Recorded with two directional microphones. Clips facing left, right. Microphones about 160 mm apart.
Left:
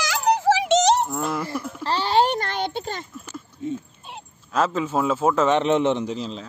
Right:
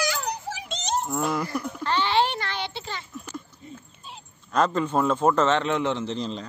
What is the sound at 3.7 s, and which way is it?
Dog, 60° left (ahead or behind).